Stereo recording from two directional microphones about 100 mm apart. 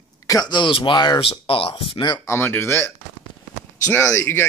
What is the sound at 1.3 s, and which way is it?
Speech, 65° left (ahead or behind).